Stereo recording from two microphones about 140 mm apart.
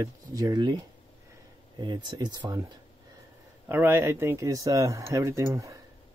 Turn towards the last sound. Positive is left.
turn(degrees=-25)  # may be behind; listen again after turning